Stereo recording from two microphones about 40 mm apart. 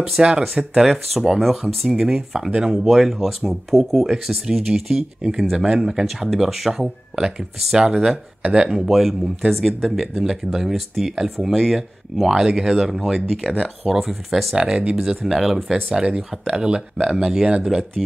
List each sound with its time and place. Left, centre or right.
0.4 s speech: centre
0.8 s speech: centre
9.5 s speech: centre
10.1 s speech: centre
13.3 s speech: centre
13.8 s speech: centre
14.6 s speech: right
15.0 s speech: centre